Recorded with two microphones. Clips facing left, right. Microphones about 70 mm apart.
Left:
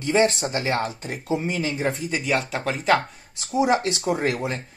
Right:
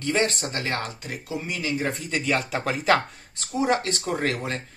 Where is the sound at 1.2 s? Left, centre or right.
Left.